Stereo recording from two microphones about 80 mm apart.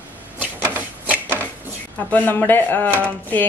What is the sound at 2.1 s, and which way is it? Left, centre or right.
Speech, centre.